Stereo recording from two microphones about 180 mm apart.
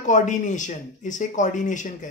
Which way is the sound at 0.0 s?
45° left (ahead or behind).